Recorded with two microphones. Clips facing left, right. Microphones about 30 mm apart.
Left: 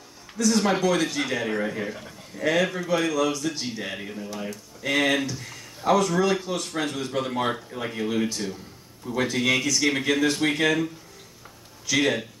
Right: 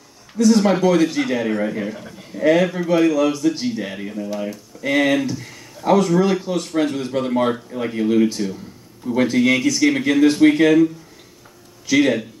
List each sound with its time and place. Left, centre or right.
0.4 s a man's voice: centre
3.6 s a man's voice: centre